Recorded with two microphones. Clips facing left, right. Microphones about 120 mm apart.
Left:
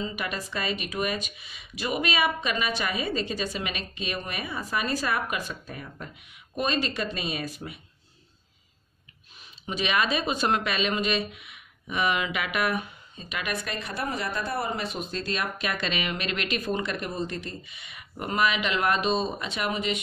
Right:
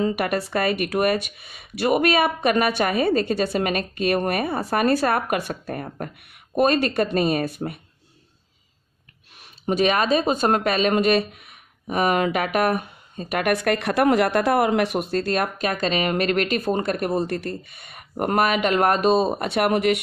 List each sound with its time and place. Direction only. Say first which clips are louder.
0.0 s speech: right 10 dB; 55° right (ahead or behind)
9.4 s speech: right 10 dB; 50° right (ahead or behind)